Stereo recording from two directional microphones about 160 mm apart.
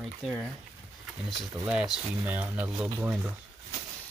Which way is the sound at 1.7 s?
5° right (ahead or behind).